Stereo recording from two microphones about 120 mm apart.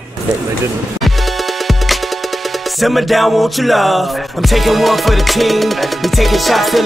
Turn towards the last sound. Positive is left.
turn(degrees=0)  # may be behind; listen again after turning